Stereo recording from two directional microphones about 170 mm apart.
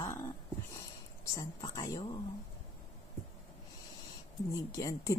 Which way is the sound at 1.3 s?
20° left (ahead or behind).